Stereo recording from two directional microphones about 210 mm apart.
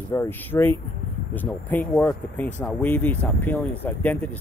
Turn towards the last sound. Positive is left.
turn(degrees=10)  # may be behind; listen again after turning